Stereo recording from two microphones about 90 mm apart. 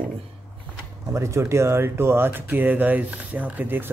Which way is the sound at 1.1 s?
30° right (ahead or behind).